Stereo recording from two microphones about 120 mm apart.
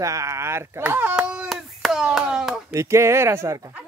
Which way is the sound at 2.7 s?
25° right (ahead or behind).